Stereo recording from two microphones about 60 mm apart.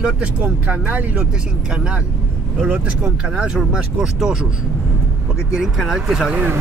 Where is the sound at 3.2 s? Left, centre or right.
Centre.